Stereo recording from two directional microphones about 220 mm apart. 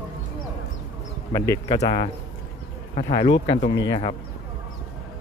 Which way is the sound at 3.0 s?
25° left (ahead or behind).